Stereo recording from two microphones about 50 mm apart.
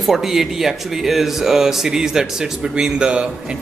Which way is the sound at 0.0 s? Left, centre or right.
Centre.